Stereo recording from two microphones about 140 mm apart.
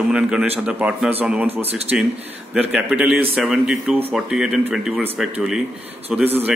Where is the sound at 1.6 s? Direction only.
45° right (ahead or behind).